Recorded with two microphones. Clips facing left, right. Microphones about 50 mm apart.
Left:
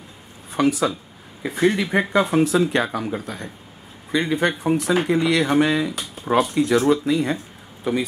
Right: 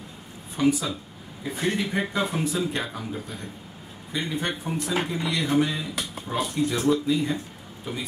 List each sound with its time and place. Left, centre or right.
0.6 s speech: left
7.9 s speech: left